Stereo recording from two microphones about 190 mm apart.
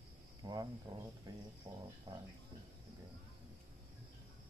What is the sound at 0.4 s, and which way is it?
Cricket, 20° right (ahead or behind).